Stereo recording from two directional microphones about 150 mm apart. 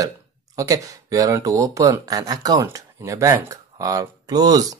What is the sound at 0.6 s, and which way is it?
Speech, 20° right (ahead or behind).